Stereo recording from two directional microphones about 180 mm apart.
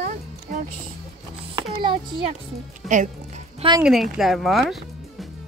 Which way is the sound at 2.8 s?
Centre (ahead or behind).